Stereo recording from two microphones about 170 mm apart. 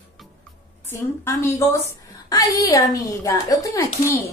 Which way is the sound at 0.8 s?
15° left (ahead or behind).